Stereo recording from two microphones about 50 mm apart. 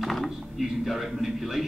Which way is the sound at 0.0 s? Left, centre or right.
Centre.